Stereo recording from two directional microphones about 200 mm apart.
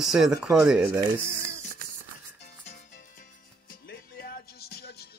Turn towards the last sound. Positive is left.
turn(degrees=50)  # may be behind; listen again after turning